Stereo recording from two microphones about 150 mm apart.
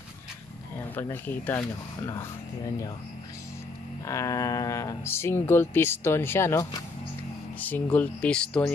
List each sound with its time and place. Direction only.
0.9 s speech: 15° left (ahead or behind)
4.0 s speech: 20° left (ahead or behind)